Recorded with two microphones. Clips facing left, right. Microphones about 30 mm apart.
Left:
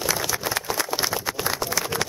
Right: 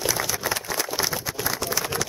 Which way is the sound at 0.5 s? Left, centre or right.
Left.